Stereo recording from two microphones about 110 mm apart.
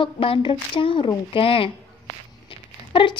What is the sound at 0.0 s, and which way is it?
A woman's voice, 50° left (ahead or behind).